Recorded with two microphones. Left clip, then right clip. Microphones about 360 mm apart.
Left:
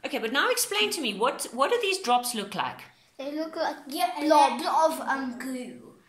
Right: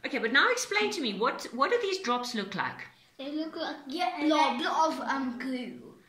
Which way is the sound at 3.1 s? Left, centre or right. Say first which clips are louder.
Left 4 dB; left.